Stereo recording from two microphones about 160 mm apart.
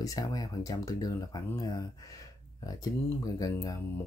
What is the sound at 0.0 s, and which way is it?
Speech, 20° left (ahead or behind).